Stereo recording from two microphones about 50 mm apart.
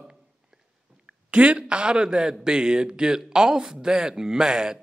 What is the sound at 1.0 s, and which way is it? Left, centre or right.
A man's voice, right.